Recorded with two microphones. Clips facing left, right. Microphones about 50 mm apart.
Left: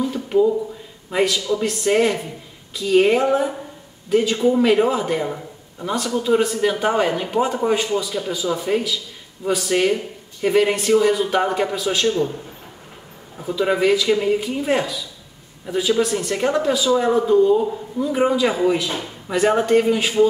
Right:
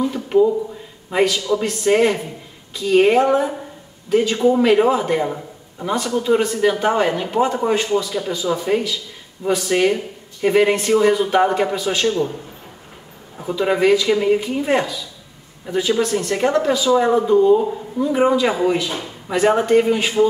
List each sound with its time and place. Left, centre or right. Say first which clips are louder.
0.1 s a sound: even; centre
1.1 s a man's voice: right 2 dB; centre
13.4 s a man's voice: right 1 dB; centre